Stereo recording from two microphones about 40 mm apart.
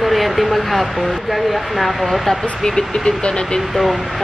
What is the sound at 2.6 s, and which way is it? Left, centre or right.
Speech, centre.